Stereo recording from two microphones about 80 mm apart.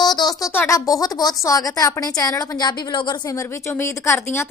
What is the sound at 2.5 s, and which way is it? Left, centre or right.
Speech, left.